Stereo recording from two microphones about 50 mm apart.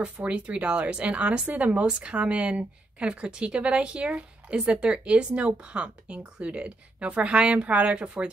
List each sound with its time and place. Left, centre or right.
0.0 s speech: right